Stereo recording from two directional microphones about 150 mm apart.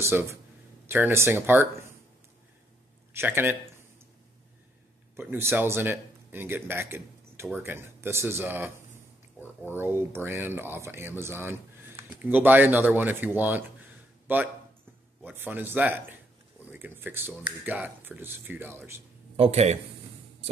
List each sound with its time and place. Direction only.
0.1 s speech: 15° right (ahead or behind)
3.1 s speech: 15° right (ahead or behind)
5.1 s speech: 15° right (ahead or behind)
9.4 s speech: 15° left (ahead or behind)
9.8 s speech: 15° right (ahead or behind)
19.3 s a man's voice: 45° right (ahead or behind)